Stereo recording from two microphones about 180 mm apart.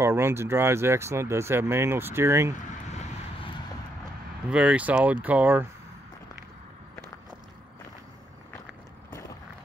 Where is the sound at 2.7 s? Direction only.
40° left (ahead or behind).